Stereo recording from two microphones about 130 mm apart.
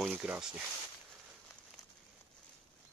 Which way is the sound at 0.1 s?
10° right (ahead or behind).